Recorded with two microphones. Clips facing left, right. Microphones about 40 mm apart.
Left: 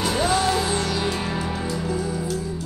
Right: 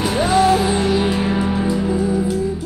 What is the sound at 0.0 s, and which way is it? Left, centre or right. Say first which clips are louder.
Music: right 6 dB; centre.